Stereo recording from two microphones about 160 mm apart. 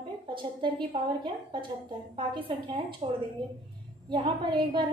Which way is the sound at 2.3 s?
30° right (ahead or behind).